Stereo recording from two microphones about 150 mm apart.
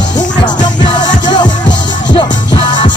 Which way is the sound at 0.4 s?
30° left (ahead or behind).